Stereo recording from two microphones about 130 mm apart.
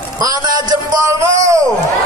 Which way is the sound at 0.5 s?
25° right (ahead or behind).